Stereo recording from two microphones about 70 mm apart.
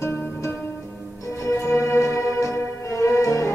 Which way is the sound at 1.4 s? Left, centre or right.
Left.